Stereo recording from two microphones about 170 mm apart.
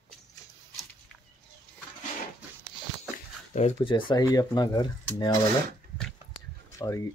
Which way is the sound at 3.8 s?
25° left (ahead or behind).